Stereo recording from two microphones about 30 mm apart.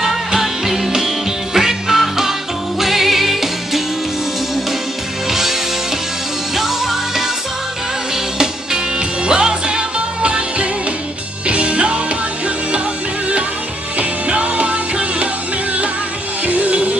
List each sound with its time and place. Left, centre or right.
0.0 s music: centre
5.3 s music: centre
9.2 s music: right
13.9 s music: right
16.4 s music: right